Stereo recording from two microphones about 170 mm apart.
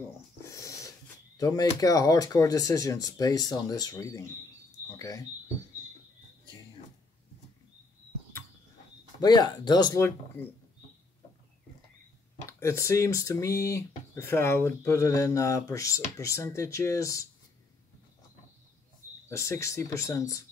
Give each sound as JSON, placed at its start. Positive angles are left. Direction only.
{"t": 0.4, "sound": "a sound", "side_deg": 20}
{"t": 1.3, "sound": "speech", "side_deg": 20}
{"t": 9.2, "sound": "speech", "side_deg": 25}
{"t": 12.4, "sound": "speech", "side_deg": 15}
{"t": 19.2, "sound": "speech", "side_deg": 15}